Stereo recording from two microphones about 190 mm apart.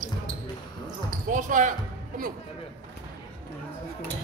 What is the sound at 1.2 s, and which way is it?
Speech, 45° right (ahead or behind).